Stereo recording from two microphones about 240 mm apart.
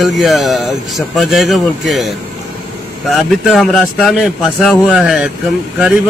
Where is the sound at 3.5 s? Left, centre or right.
Centre.